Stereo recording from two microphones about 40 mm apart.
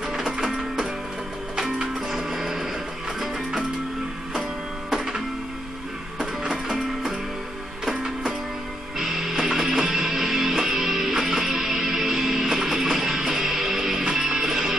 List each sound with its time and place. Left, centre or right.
0.1 s music: centre
2.0 s music: centre
4.9 s music: centre
7.8 s music: centre